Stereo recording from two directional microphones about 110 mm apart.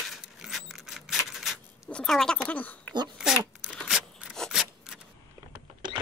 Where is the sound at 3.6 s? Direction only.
5° right (ahead or behind).